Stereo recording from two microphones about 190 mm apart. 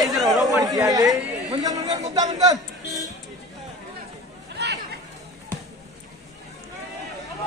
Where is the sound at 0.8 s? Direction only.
20° right (ahead or behind).